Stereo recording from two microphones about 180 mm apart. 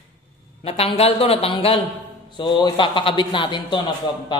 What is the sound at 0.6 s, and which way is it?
A man's voice, 35° left (ahead or behind).